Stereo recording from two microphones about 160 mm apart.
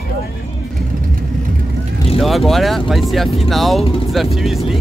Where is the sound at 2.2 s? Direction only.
Centre (ahead or behind).